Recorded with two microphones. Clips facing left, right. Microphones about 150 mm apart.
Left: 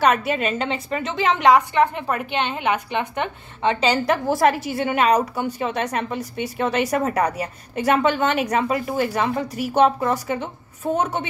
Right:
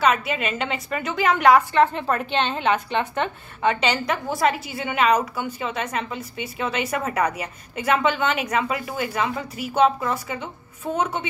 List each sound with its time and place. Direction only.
0.0 s a woman's voice: 45° left (ahead or behind); by 3.3 s 10° left (ahead or behind)
3.6 s a woman's voice: 35° left (ahead or behind)